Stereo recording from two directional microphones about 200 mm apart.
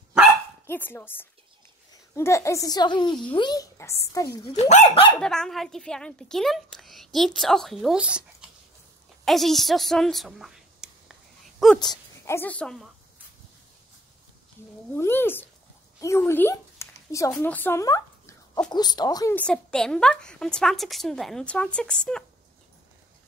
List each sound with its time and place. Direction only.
0.7 s a child's voice: 10° left (ahead or behind)
4.6 s speech: 35° left (ahead or behind)
5.1 s a woman's voice: 5° left (ahead or behind)
11.8 s a woman's voice: 15° left (ahead or behind)
15.0 s a child's voice: 10° left (ahead or behind)
19.3 s a woman's voice: 5° left (ahead or behind)